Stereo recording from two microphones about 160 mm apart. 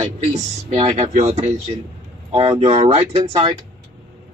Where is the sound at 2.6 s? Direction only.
40° right (ahead or behind).